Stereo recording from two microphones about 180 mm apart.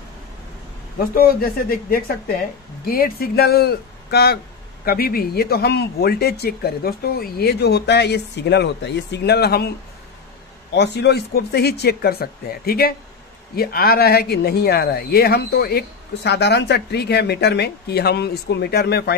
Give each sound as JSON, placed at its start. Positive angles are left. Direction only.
{"t": 0.9, "sound": "speech", "side_deg": 55}
{"t": 10.7, "sound": "speech", "side_deg": 65}